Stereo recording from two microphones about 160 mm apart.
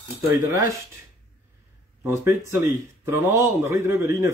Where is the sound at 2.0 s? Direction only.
15° right (ahead or behind).